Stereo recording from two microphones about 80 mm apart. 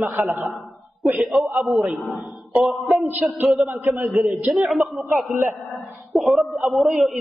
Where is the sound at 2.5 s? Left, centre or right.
Centre.